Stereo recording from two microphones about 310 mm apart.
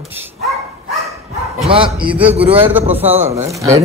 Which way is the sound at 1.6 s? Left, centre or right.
Centre.